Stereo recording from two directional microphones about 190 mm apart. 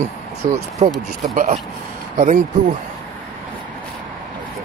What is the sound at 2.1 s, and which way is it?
Speech, 45° right (ahead or behind).